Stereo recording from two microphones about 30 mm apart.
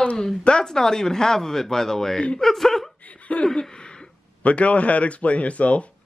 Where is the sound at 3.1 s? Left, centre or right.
Left.